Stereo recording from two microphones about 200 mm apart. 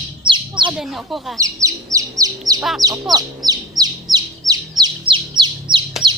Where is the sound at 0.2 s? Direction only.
25° right (ahead or behind).